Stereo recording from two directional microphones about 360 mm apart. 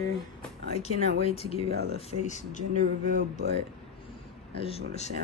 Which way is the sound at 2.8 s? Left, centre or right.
Right.